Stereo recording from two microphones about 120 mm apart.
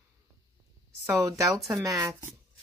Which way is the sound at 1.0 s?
30° right (ahead or behind).